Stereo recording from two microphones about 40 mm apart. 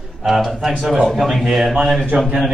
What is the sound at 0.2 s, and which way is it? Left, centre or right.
Speech, centre.